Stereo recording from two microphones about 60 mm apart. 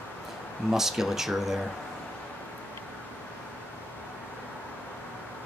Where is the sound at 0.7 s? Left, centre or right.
Centre.